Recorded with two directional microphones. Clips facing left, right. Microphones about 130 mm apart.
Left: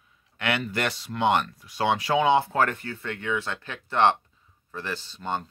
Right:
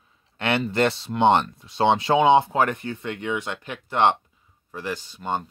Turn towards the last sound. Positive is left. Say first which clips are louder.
# right 3 dB
turn(degrees=-15)  # may be behind; listen again after turning